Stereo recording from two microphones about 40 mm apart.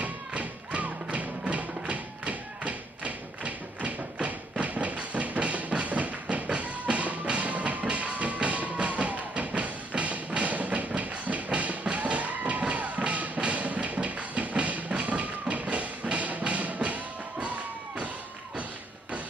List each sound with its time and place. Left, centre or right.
0.0 s music: right